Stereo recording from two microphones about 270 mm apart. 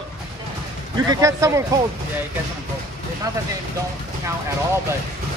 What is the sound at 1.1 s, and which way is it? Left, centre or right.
Speech, centre.